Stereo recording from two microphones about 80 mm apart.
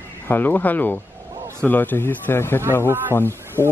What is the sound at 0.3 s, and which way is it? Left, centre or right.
A man's voice, left.